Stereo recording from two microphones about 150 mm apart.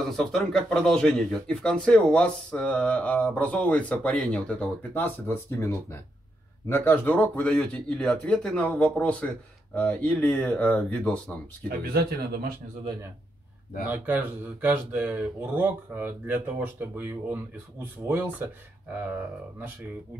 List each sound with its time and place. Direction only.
0.0 s speech: centre (ahead or behind)
6.7 s speech: 10° left (ahead or behind)
11.8 s speech: 85° right
13.8 s speech: 10° right (ahead or behind)